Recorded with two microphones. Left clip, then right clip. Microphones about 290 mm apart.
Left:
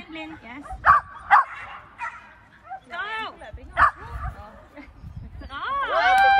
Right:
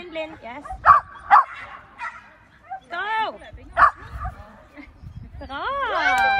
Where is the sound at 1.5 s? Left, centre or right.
Centre.